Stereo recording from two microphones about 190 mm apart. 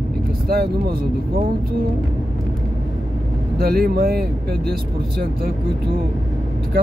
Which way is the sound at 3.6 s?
55° right (ahead or behind).